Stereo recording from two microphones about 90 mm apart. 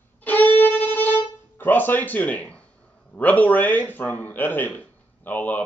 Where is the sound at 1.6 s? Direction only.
20° left (ahead or behind).